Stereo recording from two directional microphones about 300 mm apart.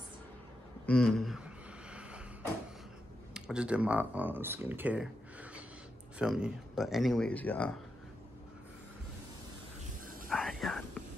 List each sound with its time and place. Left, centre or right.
0.8 s a sound: centre
3.3 s speech: centre
10.3 s whispering: centre